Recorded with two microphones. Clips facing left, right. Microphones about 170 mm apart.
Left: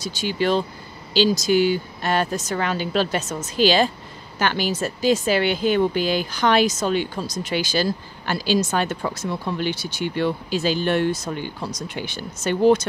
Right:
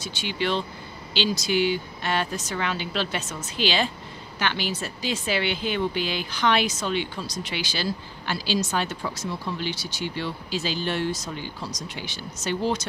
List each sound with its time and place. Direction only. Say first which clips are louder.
0.0 s speech: left 5 dB; 40° left (ahead or behind)